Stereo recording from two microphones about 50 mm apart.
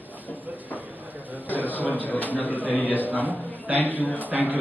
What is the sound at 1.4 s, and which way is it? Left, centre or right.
A man's voice, left.